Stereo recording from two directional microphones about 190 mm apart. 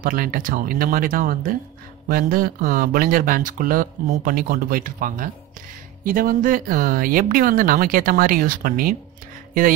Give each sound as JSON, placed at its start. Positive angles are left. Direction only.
{"t": 0.0, "sound": "speech", "side_deg": -45}